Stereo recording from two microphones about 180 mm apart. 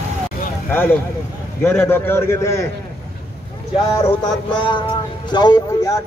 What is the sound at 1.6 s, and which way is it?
A man's voice, 10° left (ahead or behind).